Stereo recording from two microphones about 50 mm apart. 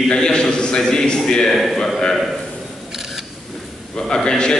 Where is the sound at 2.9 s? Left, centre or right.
Centre.